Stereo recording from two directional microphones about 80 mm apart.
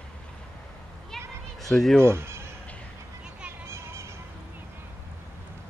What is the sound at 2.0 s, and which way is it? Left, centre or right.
Speech, right.